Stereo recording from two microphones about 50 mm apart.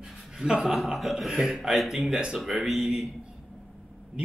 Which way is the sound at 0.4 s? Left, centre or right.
Centre.